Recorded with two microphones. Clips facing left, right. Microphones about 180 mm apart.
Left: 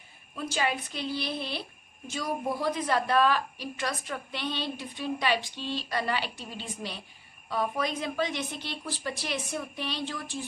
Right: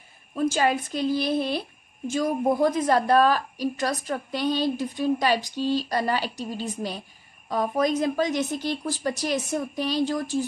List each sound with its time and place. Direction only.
0.5 s a woman's voice: 45° right (ahead or behind)